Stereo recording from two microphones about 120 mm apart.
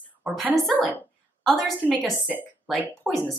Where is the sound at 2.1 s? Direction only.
15° right (ahead or behind).